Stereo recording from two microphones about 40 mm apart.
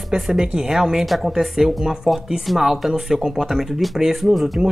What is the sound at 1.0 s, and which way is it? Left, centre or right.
Speech, centre.